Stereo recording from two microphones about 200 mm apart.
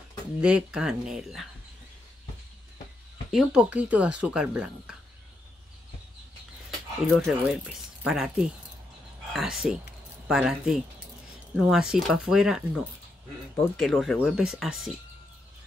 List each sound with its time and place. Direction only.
0.4 s speech: 5° right (ahead or behind)
3.3 s speech: 5° right (ahead or behind)
7.1 s speech: centre (ahead or behind)
13.7 s speech: centre (ahead or behind)